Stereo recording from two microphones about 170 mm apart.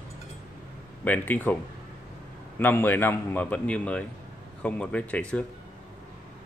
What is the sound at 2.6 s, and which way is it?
A man's voice, 10° left (ahead or behind).